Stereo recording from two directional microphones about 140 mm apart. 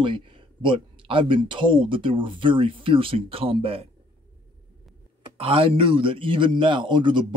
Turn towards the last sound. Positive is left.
turn(degrees=-35)  # may be behind; listen again after turning